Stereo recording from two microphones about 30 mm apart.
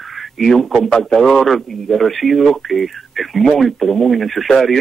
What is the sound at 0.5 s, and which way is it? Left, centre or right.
Speech, centre.